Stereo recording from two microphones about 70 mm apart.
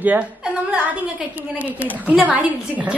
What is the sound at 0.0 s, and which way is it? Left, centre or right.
A woman's voice, right.